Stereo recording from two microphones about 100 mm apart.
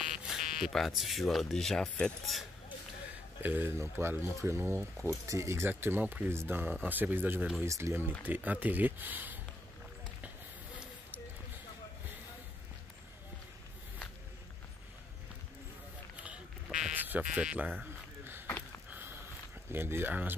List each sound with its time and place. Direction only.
0.0 s speech: 5° right (ahead or behind)
3.4 s speech: 20° right (ahead or behind)
16.9 s sheep: 20° right (ahead or behind)
17.2 s speech: 5° right (ahead or behind)
18.9 s sniff: 20° right (ahead or behind)
19.7 s speech: 25° right (ahead or behind)